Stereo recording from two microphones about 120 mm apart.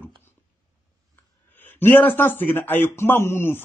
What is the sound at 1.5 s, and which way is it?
A man's voice, 15° left (ahead or behind).